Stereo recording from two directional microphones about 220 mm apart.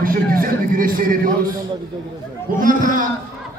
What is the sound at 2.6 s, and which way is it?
Speech, 35° right (ahead or behind).